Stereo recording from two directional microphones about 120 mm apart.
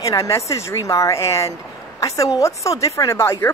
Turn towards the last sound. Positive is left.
turn(degrees=25)  # may be behind; listen again after turning